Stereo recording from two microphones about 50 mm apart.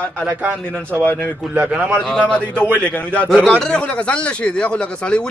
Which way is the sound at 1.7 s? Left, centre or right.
Centre.